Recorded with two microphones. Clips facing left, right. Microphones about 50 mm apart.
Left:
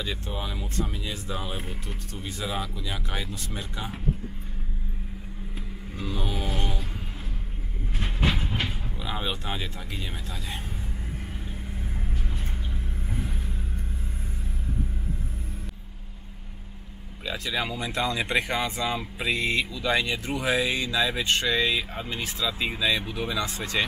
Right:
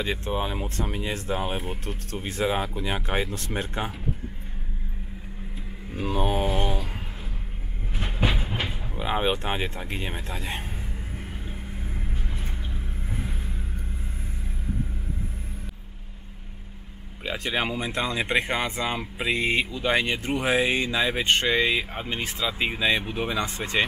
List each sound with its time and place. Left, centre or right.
0.0 s speech: right
5.9 s speech: right
8.5 s a sound: centre
8.9 s speech: right
17.2 s speech: right